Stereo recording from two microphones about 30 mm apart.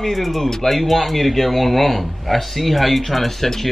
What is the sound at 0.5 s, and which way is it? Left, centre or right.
Speech, centre.